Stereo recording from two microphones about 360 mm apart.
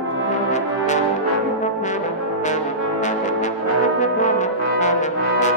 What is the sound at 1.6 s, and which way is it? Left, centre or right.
Brass instrument, centre.